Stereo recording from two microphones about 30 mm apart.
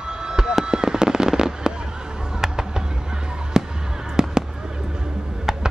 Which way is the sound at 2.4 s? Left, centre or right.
Right.